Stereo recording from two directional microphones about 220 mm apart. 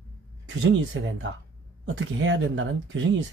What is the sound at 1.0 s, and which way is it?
Speech, 60° right (ahead or behind).